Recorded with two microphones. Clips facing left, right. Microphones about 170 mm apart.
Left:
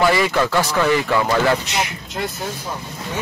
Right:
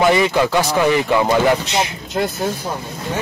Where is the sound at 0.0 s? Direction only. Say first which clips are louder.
Right 2 dB; 20° right (ahead or behind).